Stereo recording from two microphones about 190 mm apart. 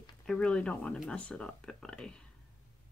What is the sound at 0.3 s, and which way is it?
Speech, 5° left (ahead or behind).